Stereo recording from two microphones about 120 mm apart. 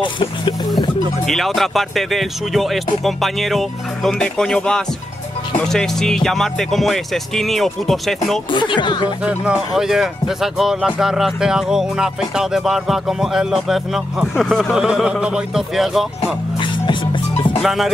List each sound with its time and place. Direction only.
0.0 s speech: 45° left (ahead or behind)
0.7 s speech: centre (ahead or behind)
8.5 s speech: 40° left (ahead or behind)
9.2 s speech: 10° right (ahead or behind)
16.5 s music: 45° left (ahead or behind)
17.6 s speech: centre (ahead or behind)